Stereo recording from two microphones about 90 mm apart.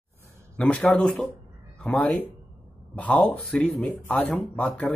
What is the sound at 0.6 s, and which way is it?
Speech, 15° left (ahead or behind).